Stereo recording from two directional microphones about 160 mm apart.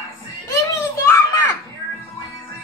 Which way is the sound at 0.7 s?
15° left (ahead or behind).